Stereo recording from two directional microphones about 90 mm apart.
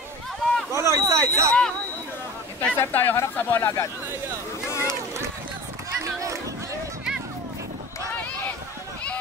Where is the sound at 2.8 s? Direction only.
20° left (ahead or behind).